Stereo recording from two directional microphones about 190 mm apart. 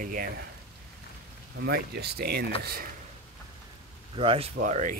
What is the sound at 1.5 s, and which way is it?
Speech, 60° right (ahead or behind).